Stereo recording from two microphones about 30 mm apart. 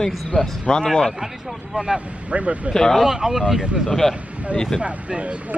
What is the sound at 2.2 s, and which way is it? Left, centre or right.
Speech, right.